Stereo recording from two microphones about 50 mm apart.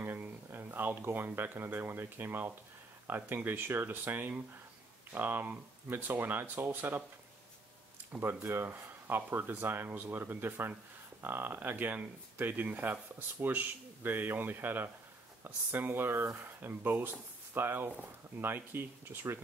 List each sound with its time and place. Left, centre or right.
0.0 s speech: right
8.2 s speech: right